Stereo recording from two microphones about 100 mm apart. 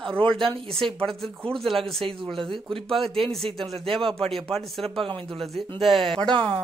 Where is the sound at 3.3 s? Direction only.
5° left (ahead or behind).